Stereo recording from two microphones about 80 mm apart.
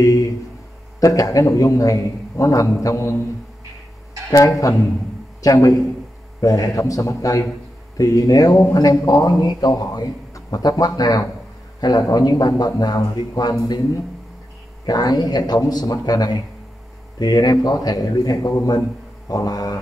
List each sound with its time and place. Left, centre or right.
0.0 s a man's voice: left
4.3 s a man's voice: left
14.9 s a man's voice: left